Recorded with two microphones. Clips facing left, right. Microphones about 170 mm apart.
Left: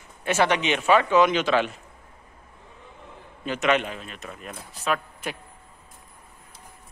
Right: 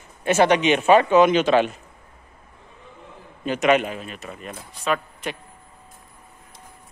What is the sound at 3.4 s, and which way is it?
A man's voice, 15° right (ahead or behind).